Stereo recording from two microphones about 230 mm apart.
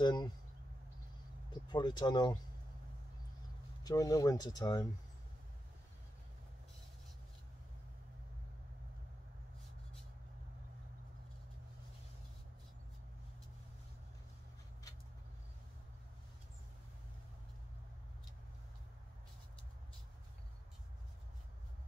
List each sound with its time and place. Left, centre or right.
0.0 s speech: centre
1.5 s speech: centre
3.8 s speech: centre